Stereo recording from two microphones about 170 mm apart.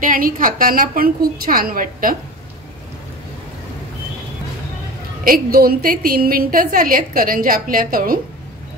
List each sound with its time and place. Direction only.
0.0 s a woman's voice: 55° right (ahead or behind)
5.2 s a woman's voice: 60° right (ahead or behind)